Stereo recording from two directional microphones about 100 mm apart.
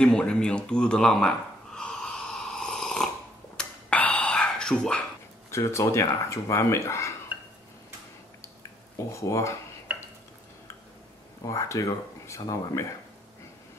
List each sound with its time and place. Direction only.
0.0 s a sound: 10° left (ahead or behind)
3.5 s whispering: 15° left (ahead or behind)
5.5 s speech: 30° left (ahead or behind)
8.9 s speech: 30° left (ahead or behind)
11.4 s speech: 35° left (ahead or behind)